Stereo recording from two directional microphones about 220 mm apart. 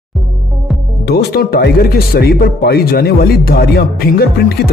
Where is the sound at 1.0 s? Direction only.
45° left (ahead or behind).